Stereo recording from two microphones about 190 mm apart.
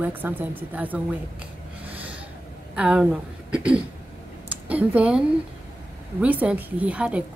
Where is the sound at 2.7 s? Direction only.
5° right (ahead or behind).